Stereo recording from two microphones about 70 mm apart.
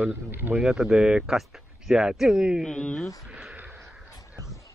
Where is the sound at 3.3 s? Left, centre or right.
Right.